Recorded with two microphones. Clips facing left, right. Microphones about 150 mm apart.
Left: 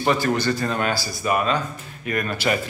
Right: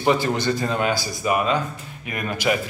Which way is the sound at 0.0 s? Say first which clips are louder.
Even; 20° right (ahead or behind).